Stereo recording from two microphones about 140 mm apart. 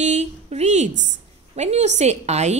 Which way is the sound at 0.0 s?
50° right (ahead or behind).